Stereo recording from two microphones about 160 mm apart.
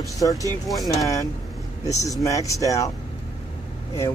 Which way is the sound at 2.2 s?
20° left (ahead or behind).